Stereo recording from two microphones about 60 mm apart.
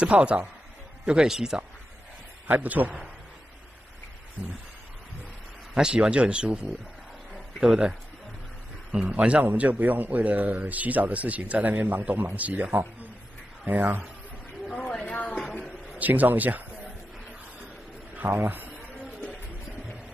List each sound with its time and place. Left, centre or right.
0.0 s speech: centre
2.4 s speech: right
5.8 s speech: centre
8.9 s speech: centre
13.7 s speech: right
15.0 s a sound: left
16.0 s speech: right
18.3 s speech: right